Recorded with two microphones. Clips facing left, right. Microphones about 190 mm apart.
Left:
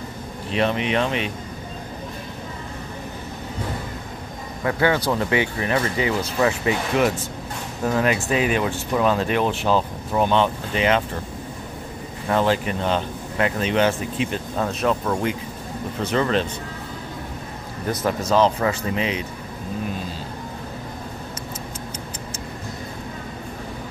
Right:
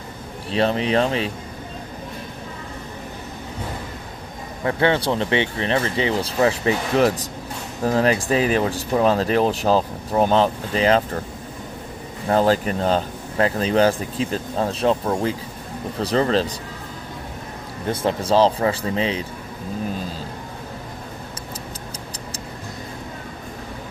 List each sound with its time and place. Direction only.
0.5 s speech: 35° right (ahead or behind)
4.6 s speech: 25° right (ahead or behind)
12.3 s speech: 40° right (ahead or behind)
17.8 s speech: 30° right (ahead or behind)